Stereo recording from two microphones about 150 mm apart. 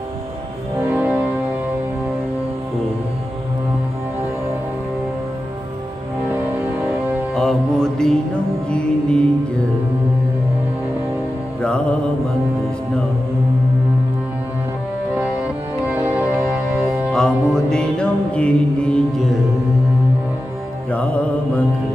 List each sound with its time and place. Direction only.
0.7 s music: 15° right (ahead or behind)
6.3 s music: 15° right (ahead or behind)
7.3 s music: 5° left (ahead or behind)
15.8 s music: 10° right (ahead or behind)
17.1 s music: 5° left (ahead or behind)
20.9 s music: 10° left (ahead or behind)